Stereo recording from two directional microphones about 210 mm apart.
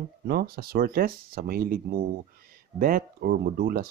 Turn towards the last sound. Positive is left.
turn(degrees=-45)  # may be behind; listen again after turning